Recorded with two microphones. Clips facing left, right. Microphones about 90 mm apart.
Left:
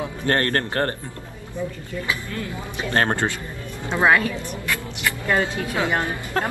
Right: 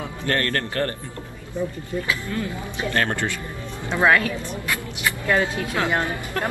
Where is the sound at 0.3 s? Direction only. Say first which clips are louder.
Left 2 dB; 40° left (ahead or behind).